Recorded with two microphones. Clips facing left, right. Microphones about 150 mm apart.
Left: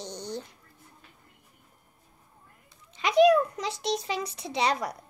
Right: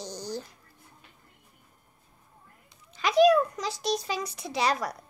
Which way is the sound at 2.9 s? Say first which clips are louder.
Even; 25° left (ahead or behind).